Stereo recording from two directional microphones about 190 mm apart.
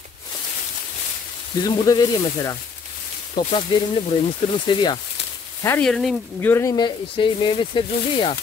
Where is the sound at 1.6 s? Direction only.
20° left (ahead or behind).